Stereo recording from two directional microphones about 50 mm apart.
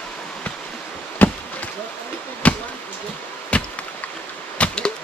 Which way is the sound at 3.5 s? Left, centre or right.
Left.